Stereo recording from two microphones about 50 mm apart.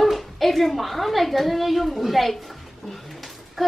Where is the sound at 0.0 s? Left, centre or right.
Centre.